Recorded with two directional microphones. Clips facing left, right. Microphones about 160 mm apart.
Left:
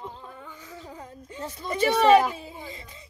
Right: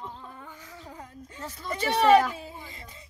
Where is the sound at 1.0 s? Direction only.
20° left (ahead or behind).